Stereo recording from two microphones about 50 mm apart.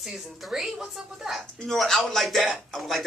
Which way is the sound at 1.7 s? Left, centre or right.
Centre.